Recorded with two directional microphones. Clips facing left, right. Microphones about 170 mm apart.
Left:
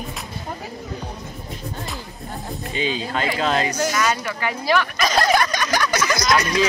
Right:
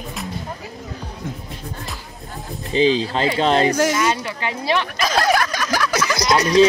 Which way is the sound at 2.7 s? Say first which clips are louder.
Right 8 dB; 30° right (ahead or behind).